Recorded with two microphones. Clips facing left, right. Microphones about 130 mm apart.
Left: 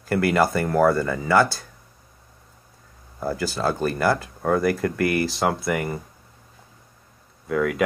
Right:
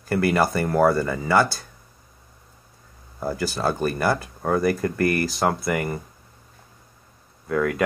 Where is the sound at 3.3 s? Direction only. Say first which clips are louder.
Even; centre (ahead or behind).